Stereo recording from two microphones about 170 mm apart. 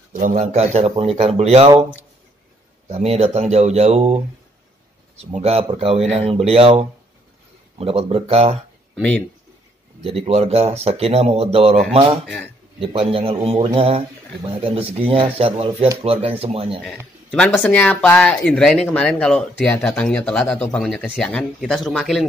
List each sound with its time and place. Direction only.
0.1 s a man's voice: 50° right (ahead or behind)
2.9 s a man's voice: 40° right (ahead or behind)
8.9 s speech: 5° left (ahead or behind)
10.0 s a man's voice: 35° right (ahead or behind)
17.3 s speech: 5° left (ahead or behind)